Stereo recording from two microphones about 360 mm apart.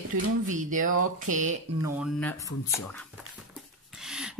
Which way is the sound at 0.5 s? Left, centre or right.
Right.